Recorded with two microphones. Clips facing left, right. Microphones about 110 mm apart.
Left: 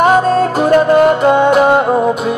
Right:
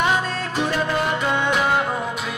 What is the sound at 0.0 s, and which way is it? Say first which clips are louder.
Music: left 12 dB; 45° left (ahead or behind).